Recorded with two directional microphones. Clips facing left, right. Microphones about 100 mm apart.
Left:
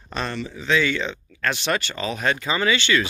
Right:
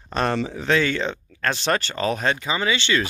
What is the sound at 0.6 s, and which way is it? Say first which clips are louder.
Speech: left 2 dB; 45° right (ahead or behind).